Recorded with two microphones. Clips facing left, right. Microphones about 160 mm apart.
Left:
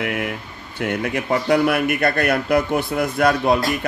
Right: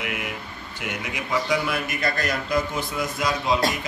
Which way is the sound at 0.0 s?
55° left (ahead or behind).